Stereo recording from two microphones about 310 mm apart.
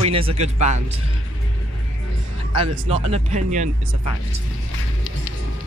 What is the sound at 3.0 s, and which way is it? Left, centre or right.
Speech, right.